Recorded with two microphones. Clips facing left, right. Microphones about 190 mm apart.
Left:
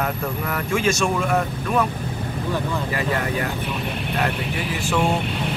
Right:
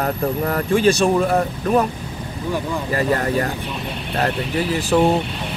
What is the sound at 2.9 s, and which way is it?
Speech, 40° right (ahead or behind).